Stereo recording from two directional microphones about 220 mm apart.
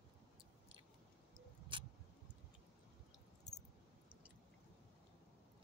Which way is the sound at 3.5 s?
Centre (ahead or behind).